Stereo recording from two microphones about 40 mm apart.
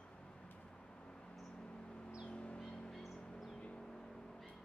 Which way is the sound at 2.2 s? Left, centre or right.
Left.